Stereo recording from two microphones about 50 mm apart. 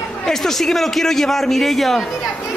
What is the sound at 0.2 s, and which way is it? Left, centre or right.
A man's voice, centre.